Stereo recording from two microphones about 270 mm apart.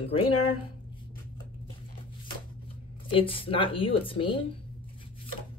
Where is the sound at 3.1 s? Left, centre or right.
Centre.